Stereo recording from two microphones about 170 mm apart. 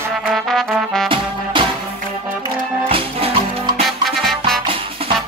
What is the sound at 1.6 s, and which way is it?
Music, 30° right (ahead or behind).